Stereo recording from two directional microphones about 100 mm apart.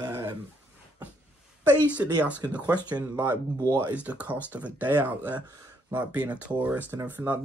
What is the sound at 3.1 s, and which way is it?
Speech, 20° right (ahead or behind).